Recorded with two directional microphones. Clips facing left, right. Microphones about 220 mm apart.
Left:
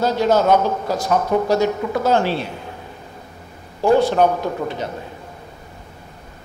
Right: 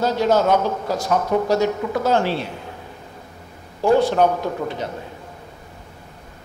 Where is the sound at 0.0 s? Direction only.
20° left (ahead or behind).